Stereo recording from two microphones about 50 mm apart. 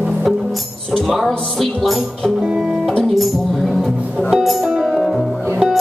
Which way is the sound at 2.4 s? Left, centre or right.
Centre.